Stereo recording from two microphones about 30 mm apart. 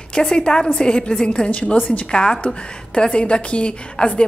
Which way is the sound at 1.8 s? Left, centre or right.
Left.